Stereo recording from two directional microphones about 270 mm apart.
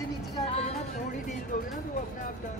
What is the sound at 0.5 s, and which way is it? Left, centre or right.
Music, left.